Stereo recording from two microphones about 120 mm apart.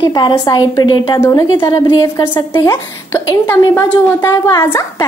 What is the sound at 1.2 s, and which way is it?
A woman's voice, 25° left (ahead or behind).